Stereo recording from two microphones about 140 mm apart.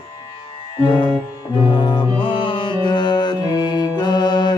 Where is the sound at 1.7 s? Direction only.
30° left (ahead or behind).